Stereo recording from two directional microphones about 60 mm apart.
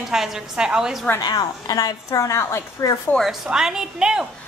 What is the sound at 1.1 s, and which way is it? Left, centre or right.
Speech, left.